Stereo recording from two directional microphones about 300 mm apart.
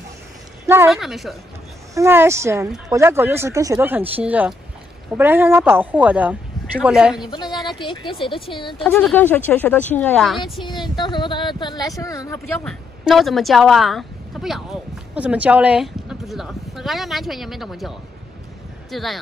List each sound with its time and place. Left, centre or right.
0.7 s speech: centre
7.2 s speech: centre
8.8 s speech: centre
10.6 s speech: centre